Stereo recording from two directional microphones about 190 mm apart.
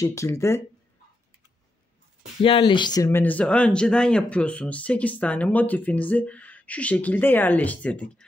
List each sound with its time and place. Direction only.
0.0 s speech: 15° left (ahead or behind)
2.4 s speech: 25° left (ahead or behind); by 8.3 s 5° left (ahead or behind)